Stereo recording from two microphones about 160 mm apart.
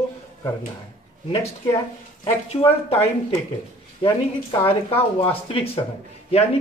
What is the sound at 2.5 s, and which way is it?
Speech, 40° left (ahead or behind).